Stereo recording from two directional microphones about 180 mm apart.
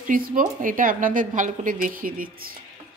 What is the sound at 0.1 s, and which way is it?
A woman's voice, 45° right (ahead or behind).